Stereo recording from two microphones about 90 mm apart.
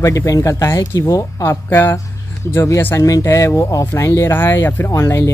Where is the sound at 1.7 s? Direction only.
25° left (ahead or behind).